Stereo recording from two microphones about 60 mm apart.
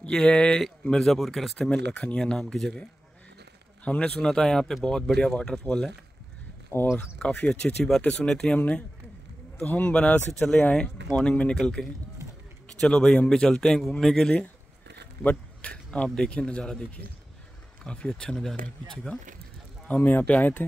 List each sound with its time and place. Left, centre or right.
0.1 s speech: centre
1.6 s speech: centre
3.8 s speech: centre
6.7 s speech: left
7.2 s speech: centre
8.0 s speech: centre
8.5 s speech: left
12.8 s speech: centre
15.2 s speech: left
19.9 s speech: left